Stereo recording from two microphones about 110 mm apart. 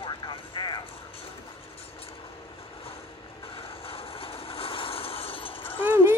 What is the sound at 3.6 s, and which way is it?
Vehicle, 60° left (ahead or behind).